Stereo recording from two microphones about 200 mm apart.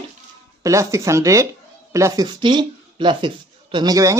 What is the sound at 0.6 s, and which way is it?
Speech, 15° right (ahead or behind).